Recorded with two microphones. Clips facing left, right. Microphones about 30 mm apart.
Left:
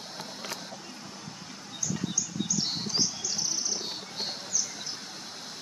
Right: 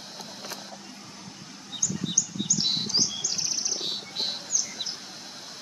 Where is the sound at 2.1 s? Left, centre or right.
Right.